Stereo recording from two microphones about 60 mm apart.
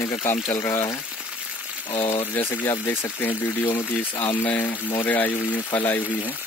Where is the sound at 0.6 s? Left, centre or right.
Left.